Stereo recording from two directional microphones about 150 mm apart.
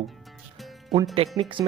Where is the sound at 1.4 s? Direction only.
35° right (ahead or behind).